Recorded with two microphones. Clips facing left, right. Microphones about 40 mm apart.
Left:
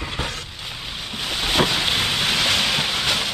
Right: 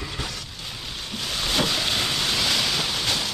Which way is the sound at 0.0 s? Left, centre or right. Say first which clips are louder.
Left 4 dB; left.